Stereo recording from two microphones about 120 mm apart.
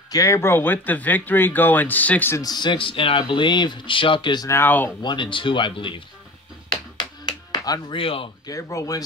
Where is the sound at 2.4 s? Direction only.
40° left (ahead or behind).